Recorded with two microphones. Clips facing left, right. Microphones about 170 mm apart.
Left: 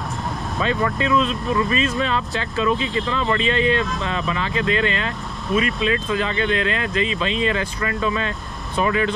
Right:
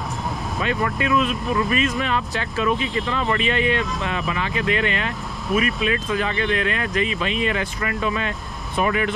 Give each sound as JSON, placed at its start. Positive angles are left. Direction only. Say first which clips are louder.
{"t": 0.9, "sound": "speech", "louder": "left 1 dB", "side_deg": 25}